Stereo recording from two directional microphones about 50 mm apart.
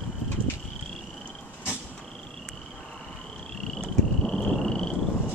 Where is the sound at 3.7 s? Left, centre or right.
Centre.